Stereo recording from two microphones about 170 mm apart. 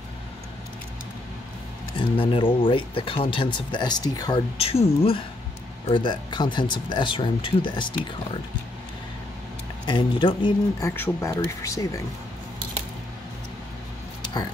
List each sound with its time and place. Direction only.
2.0 s speech: 30° left (ahead or behind)
4.6 s speech: 35° left (ahead or behind)
9.8 s speech: 30° left (ahead or behind)
10.9 s speech: 15° left (ahead or behind)